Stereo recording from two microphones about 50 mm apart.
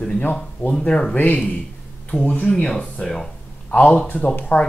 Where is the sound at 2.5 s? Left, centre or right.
Centre.